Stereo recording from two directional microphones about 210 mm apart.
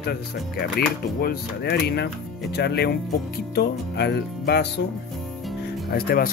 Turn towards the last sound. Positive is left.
turn(degrees=45)  # may be behind; listen again after turning